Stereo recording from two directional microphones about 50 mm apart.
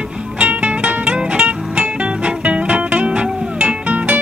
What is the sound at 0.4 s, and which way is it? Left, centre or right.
Music, right.